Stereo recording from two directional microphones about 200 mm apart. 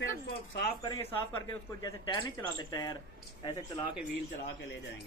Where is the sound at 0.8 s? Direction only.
20° left (ahead or behind).